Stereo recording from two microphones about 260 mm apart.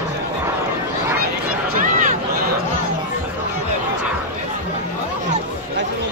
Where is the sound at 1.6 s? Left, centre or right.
Right.